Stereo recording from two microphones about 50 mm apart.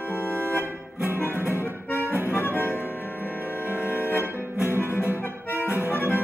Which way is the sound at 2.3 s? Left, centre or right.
Left.